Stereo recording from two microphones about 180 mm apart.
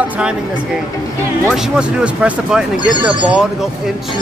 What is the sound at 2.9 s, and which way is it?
Speech, 25° right (ahead or behind).